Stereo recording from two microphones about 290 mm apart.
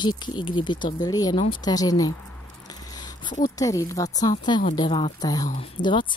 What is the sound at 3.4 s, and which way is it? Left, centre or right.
Speech, centre.